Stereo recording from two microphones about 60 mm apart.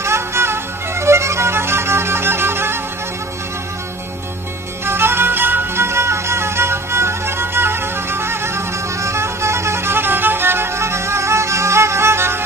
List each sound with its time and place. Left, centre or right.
0.0 s music: right
4.8 s music: right